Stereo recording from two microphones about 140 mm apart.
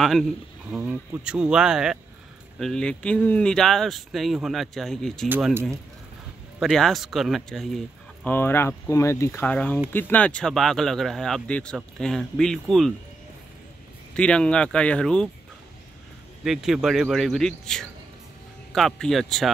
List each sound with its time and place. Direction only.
0.0 s speech: centre (ahead or behind)
0.7 s speech: 10° right (ahead or behind)
5.5 s speech: 15° right (ahead or behind)
6.6 s speech: centre (ahead or behind)
8.3 s speech: 15° left (ahead or behind)
14.1 s speech: 5° left (ahead or behind)
16.4 s speech: 5° right (ahead or behind)